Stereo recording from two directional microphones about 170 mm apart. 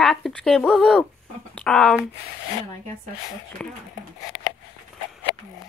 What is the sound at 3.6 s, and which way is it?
Speech, 5° left (ahead or behind).